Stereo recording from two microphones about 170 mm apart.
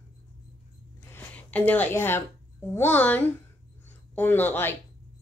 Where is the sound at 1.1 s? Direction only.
10° left (ahead or behind).